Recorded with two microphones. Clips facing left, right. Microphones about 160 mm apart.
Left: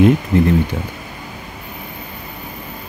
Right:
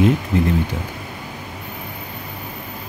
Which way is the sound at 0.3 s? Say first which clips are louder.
Left 4 dB; 60° left (ahead or behind).